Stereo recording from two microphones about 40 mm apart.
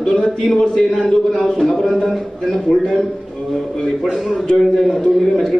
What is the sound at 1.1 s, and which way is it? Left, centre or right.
A man's voice, centre.